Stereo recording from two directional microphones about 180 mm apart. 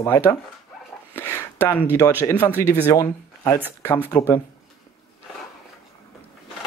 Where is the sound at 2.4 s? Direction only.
10° left (ahead or behind).